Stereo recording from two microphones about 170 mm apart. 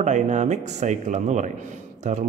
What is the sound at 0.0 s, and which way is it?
Speech, 45° right (ahead or behind).